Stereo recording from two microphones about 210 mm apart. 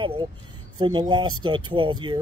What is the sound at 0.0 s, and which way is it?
Speech, 25° right (ahead or behind).